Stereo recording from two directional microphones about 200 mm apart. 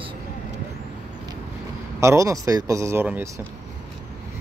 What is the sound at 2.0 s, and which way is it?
Speech, 15° right (ahead or behind).